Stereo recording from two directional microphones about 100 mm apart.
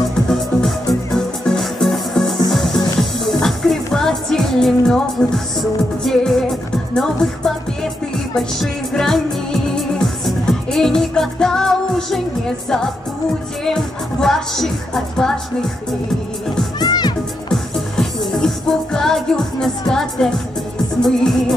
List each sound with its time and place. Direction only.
0.3 s music: 5° left (ahead or behind)
12.6 s speech: 5° left (ahead or behind)
16.8 s music: 45° left (ahead or behind)
18.3 s speech: 5° left (ahead or behind)